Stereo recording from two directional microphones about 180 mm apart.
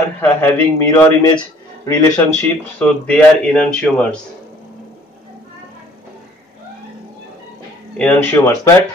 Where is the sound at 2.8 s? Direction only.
5° left (ahead or behind).